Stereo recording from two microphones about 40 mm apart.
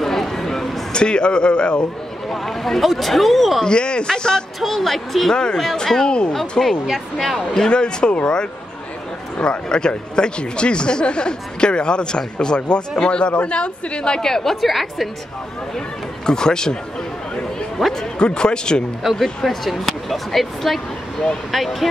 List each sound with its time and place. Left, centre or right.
0.0 s a sound: centre
0.9 s speech: left
2.2 s speech: centre
3.6 s speech: left
4.6 s speech: centre
5.3 s speech: centre
6.6 s speech: centre; by 8.3 s left
9.4 s speech: left; by 15.0 s centre
16.3 s speech: centre
17.7 s speech: centre
18.2 s speech: left
19.1 s speech: centre